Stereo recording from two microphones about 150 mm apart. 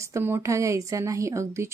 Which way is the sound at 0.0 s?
15° right (ahead or behind).